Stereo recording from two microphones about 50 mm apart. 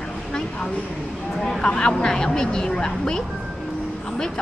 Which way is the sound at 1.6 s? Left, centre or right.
Centre.